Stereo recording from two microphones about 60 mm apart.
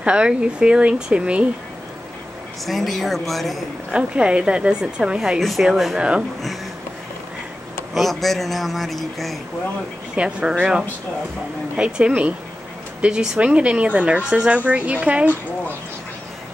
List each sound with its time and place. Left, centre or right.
0.0 s speech: centre
2.6 s speech: centre
3.9 s speech: centre
5.4 s speech: centre
5.9 s speech: centre
7.9 s speech: centre
10.1 s a woman's voice: centre